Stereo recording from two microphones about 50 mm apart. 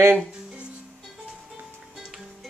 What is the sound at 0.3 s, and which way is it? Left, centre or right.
Music, centre.